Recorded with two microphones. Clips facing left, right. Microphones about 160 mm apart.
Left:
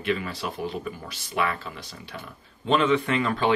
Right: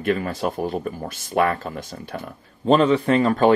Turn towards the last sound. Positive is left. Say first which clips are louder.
# right 7 dB
turn(degrees=-45)  # may be behind; listen again after turning